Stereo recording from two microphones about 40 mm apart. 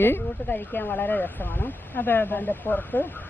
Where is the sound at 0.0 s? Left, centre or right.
Left.